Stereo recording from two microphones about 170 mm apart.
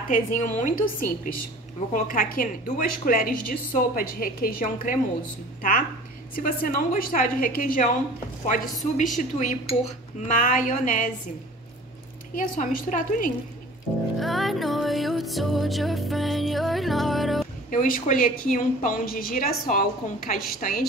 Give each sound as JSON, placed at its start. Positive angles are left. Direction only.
{"t": 0.1, "sound": "a woman's voice", "side_deg": 50}
{"t": 12.4, "sound": "a woman's voice", "side_deg": 50}
{"t": 14.1, "sound": "music", "side_deg": 0}
{"t": 17.6, "sound": "a woman's voice", "side_deg": 50}